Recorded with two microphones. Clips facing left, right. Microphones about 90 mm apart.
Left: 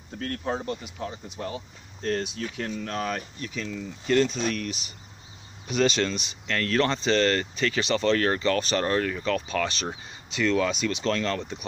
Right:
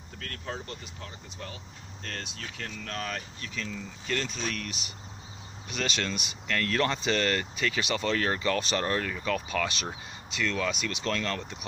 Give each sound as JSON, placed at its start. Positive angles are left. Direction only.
{"t": 0.2, "sound": "speech", "side_deg": 30}
{"t": 2.0, "sound": "speech", "side_deg": 20}
{"t": 8.8, "sound": "speech", "side_deg": 0}
{"t": 9.8, "sound": "speech", "side_deg": 5}